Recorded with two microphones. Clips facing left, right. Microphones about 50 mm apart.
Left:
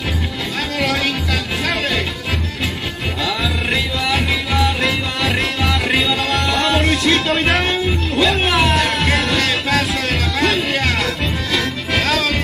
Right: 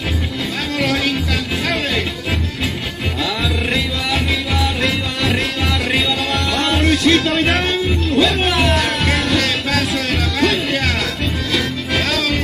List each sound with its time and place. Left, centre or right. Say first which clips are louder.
0.7 s music: right 1 dB; centre
3.2 s music: even; centre
6.4 s music: right 1 dB; left